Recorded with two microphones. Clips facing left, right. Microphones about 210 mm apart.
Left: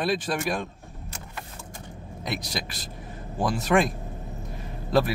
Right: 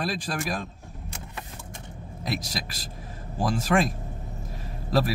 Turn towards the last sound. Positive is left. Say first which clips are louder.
# left 2 dB
turn(degrees=0)  # may be behind; listen again after turning